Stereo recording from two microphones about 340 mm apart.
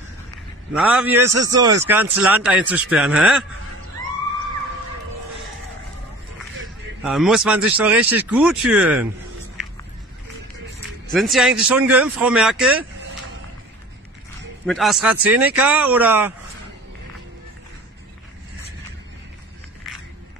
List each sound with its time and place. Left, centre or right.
0.7 s speech: centre
7.0 s speech: centre
11.1 s speech: centre
14.7 s speech: centre